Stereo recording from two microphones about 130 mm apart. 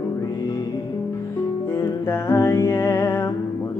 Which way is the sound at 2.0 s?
20° left (ahead or behind).